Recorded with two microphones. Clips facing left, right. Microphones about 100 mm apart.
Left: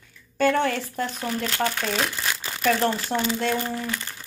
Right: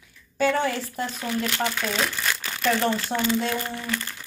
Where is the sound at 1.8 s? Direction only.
20° left (ahead or behind).